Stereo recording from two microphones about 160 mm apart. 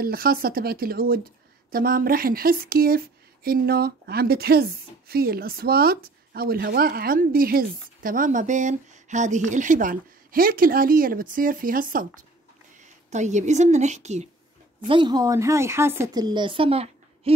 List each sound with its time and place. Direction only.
0.0 s speech: 70° right (ahead or behind)
3.4 s speech: 75° right (ahead or behind); by 12.3 s 60° right (ahead or behind)
12.8 s speech: 45° right (ahead or behind)
14.9 s speech: 30° right (ahead or behind)